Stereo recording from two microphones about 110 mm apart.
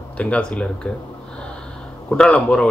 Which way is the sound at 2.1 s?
10° left (ahead or behind).